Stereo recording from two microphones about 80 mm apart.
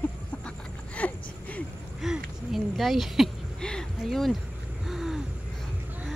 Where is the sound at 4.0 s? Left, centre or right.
Centre.